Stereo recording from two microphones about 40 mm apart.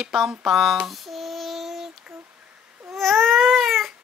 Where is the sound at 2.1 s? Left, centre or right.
Right.